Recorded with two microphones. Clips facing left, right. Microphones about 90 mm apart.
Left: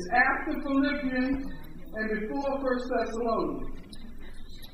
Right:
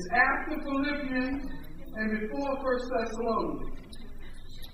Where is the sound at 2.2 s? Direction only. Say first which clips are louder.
Left 2 dB; 35° left (ahead or behind).